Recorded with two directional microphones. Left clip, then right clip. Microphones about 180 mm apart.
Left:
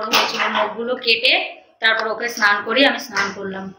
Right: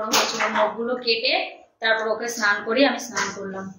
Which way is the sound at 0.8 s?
Centre (ahead or behind).